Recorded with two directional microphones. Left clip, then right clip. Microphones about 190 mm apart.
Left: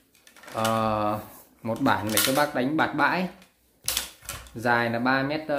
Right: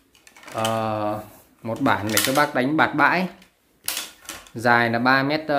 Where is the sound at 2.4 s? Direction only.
15° right (ahead or behind).